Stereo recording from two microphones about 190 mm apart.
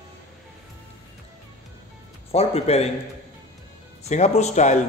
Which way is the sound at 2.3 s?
30° left (ahead or behind).